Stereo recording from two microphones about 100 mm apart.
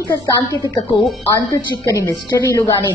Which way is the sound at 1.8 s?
30° left (ahead or behind).